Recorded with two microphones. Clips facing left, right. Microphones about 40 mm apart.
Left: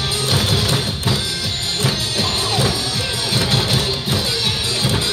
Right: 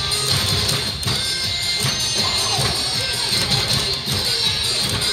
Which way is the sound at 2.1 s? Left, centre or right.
Centre.